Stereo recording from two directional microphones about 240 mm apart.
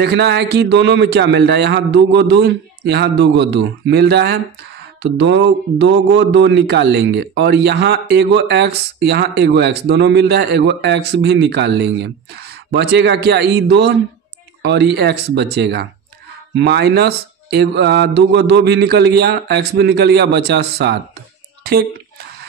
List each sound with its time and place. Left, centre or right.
0.0 s a man's voice: right